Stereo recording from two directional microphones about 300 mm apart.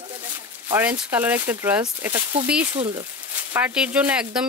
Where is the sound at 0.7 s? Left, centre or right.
Centre.